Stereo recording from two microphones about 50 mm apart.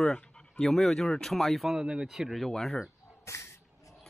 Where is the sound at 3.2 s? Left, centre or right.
Left.